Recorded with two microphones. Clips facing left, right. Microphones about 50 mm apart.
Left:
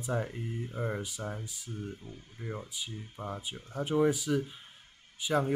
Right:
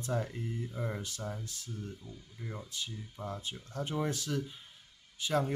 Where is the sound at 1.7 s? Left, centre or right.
Left.